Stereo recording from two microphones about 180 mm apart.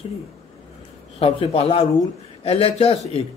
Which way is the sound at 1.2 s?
30° left (ahead or behind).